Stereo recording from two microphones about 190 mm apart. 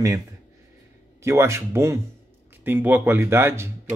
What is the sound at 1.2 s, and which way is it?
Speech, 15° right (ahead or behind).